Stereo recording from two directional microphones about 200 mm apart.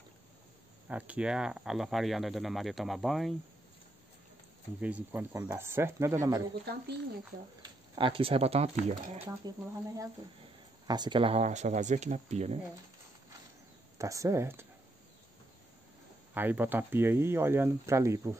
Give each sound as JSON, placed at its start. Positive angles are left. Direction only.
{"t": 0.8, "sound": "speech", "side_deg": -5}
{"t": 4.7, "sound": "speech", "side_deg": -5}
{"t": 6.6, "sound": "speech", "side_deg": -55}
{"t": 7.6, "sound": "speech", "side_deg": -25}
{"t": 9.5, "sound": "speech", "side_deg": -20}
{"t": 10.9, "sound": "speech", "side_deg": -20}
{"t": 13.9, "sound": "speech", "side_deg": -15}
{"t": 16.3, "sound": "speech", "side_deg": -10}